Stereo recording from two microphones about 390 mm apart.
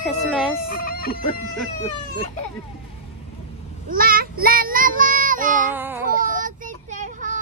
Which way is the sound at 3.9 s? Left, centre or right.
Right.